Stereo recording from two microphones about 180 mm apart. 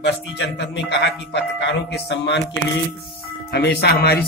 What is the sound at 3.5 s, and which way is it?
Speech, 65° left (ahead or behind).